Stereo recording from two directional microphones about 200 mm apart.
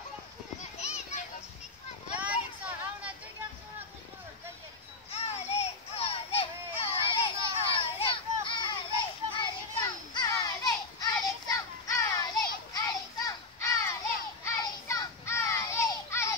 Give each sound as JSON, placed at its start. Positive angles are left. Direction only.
{"t": 0.7, "sound": "children playing", "side_deg": 35}
{"t": 2.1, "sound": "a sound", "side_deg": -5}
{"t": 5.1, "sound": "children playing", "side_deg": 30}
{"t": 9.4, "sound": "child singing", "side_deg": 20}
{"t": 14.4, "sound": "children playing", "side_deg": 15}